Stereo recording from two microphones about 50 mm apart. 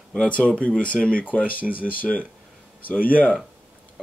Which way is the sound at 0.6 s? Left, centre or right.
Left.